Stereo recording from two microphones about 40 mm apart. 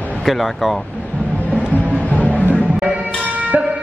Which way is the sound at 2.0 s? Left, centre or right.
Left.